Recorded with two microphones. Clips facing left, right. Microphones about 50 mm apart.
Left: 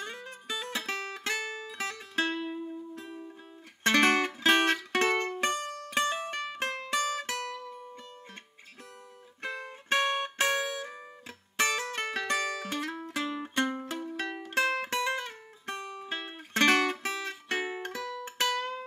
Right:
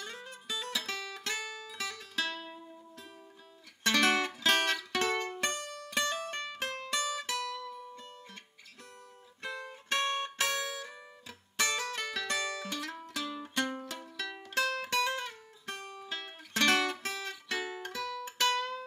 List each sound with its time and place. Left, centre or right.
0.0 s music: left
6.6 s music: left
9.4 s music: left
13.7 s music: left